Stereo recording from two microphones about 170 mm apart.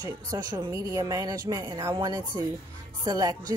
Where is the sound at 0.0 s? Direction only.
25° right (ahead or behind).